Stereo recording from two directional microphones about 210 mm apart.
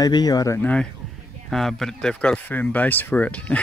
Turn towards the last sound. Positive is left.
turn(degrees=5)  # may be behind; listen again after turning